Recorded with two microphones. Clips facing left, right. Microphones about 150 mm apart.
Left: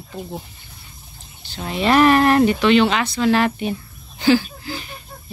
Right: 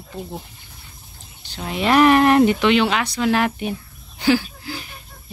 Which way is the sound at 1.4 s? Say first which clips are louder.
Left 1 dB; 10° right (ahead or behind).